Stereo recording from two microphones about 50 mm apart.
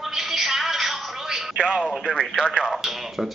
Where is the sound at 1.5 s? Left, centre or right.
Centre.